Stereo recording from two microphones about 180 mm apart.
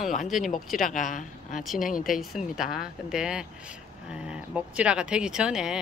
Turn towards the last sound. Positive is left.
turn(degrees=-5)  # may be behind; listen again after turning